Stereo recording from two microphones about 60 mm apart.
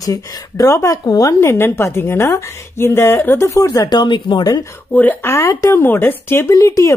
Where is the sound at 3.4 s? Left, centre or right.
Left.